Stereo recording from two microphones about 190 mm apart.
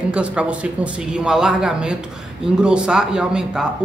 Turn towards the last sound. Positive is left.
turn(degrees=-5)  # may be behind; listen again after turning